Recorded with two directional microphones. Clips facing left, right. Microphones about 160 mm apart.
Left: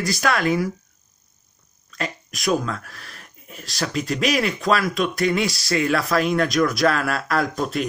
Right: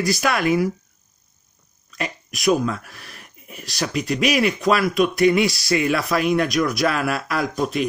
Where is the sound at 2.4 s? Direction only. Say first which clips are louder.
Right 3 dB; 10° right (ahead or behind).